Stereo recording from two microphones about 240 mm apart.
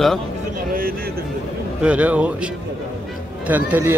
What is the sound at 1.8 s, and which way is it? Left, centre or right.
A man's voice, centre.